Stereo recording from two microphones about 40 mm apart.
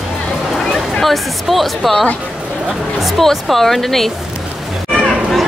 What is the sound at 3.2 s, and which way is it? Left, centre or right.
Speech, centre.